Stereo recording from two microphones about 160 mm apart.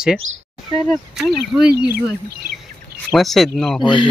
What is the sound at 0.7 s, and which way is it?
Speech, centre (ahead or behind).